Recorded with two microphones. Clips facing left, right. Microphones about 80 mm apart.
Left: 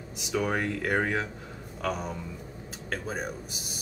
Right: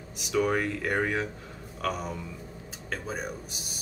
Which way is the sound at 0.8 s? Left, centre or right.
Centre.